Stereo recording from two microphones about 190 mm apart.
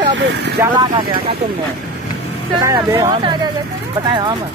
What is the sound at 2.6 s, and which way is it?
Speech, 15° right (ahead or behind).